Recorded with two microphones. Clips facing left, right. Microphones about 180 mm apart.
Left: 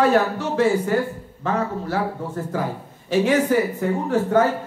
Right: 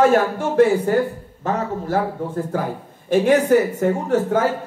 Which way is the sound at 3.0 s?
50° right (ahead or behind).